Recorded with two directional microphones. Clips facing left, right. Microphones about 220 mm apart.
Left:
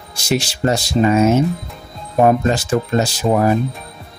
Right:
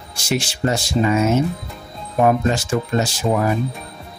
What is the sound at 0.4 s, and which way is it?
Speech, 40° left (ahead or behind).